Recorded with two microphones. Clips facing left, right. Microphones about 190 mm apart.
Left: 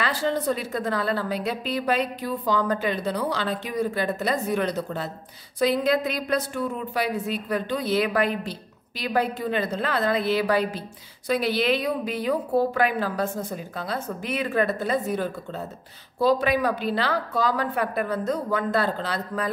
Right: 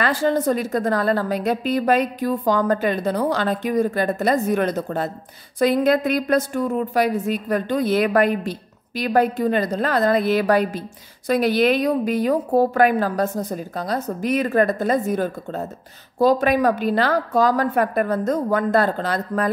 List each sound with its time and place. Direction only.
0.0 s a woman's voice: 50° right (ahead or behind)